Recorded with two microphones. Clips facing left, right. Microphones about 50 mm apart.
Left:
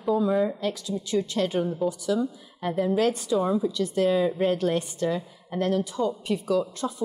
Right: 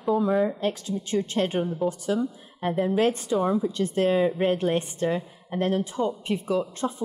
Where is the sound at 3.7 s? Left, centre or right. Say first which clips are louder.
Even; right.